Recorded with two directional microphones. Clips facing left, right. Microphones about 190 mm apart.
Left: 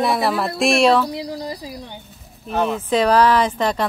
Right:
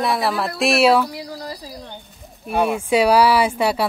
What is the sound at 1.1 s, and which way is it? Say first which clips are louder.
Speech: left 4 dB; 20° left (ahead or behind).